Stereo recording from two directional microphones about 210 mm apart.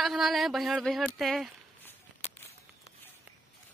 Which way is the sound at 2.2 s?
30° left (ahead or behind).